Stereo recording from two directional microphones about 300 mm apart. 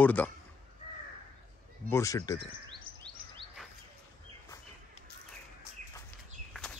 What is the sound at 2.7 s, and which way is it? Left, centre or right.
Chirp, centre.